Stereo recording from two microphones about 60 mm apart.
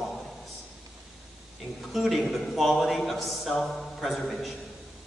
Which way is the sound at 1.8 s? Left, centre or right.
Centre.